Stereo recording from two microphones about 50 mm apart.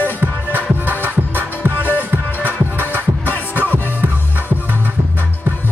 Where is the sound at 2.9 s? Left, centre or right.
Left.